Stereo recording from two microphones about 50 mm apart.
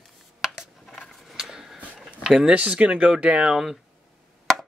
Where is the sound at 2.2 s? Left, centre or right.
Centre.